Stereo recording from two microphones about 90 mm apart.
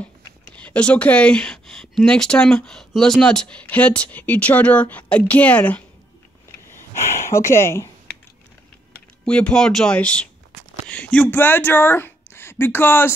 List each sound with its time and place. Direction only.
0.0 s speech: 15° left (ahead or behind)
7.0 s speech: 30° left (ahead or behind)
9.2 s speech: 10° left (ahead or behind)